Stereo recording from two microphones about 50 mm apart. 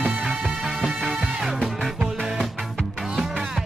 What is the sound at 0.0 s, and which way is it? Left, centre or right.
Music, centre.